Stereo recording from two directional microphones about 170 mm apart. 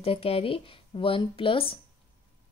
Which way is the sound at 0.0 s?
35° left (ahead or behind).